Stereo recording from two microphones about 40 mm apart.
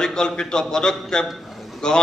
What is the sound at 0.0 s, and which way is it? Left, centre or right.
A man's voice, centre.